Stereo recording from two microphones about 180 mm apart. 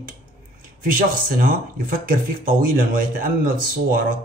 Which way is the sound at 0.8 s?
50° right (ahead or behind).